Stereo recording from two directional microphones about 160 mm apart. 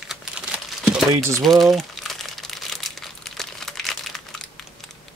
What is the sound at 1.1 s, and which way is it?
Speech, 20° right (ahead or behind).